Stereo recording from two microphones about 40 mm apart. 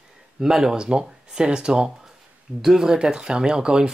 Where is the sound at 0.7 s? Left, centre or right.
Right.